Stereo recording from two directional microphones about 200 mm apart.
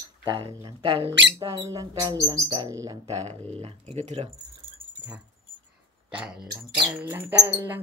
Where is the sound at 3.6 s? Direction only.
35° right (ahead or behind).